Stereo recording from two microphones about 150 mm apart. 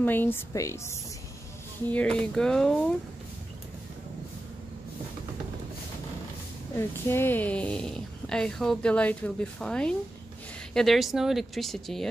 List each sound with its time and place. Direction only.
0.0 s speech: 15° left (ahead or behind)
1.9 s speech: 10° left (ahead or behind)
7.1 s speech: 15° left (ahead or behind)